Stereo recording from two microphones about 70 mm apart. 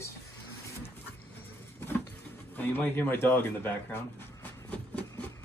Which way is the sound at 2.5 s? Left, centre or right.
Left.